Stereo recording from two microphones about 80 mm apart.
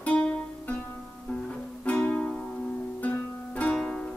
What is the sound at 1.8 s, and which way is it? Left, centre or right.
Music, centre.